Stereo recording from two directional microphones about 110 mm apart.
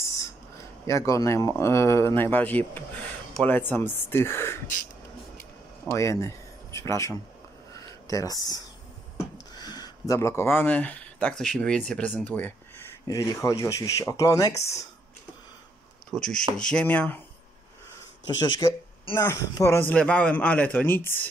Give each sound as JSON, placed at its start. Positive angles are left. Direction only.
{"t": 0.8, "sound": "speech", "side_deg": 30}
{"t": 5.9, "sound": "speech", "side_deg": 25}
{"t": 13.0, "sound": "speech", "side_deg": 30}
{"t": 16.1, "sound": "speech", "side_deg": 5}
{"t": 18.2, "sound": "speech", "side_deg": 40}
{"t": 19.1, "sound": "speech", "side_deg": 25}
{"t": 19.9, "sound": "speech", "side_deg": 10}